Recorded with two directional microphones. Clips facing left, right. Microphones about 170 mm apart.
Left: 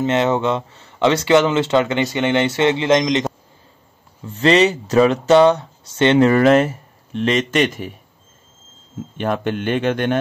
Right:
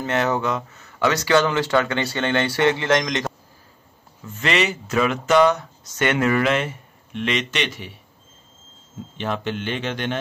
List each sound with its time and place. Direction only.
0.0 s speech: 20° left (ahead or behind)
4.3 s speech: 35° left (ahead or behind)
9.2 s speech: 50° left (ahead or behind)